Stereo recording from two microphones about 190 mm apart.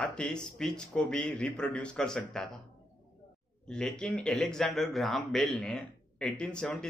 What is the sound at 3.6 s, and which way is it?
Speech, 5° left (ahead or behind).